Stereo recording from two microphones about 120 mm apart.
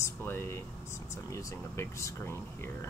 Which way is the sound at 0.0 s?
20° left (ahead or behind).